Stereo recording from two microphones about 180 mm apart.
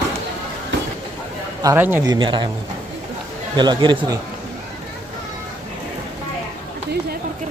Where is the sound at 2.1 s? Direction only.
25° right (ahead or behind).